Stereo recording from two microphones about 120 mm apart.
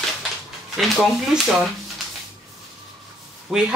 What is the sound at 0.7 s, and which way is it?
Speech, centre (ahead or behind).